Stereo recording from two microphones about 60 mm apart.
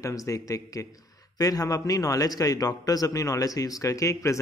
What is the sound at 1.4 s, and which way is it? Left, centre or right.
A man's voice, left.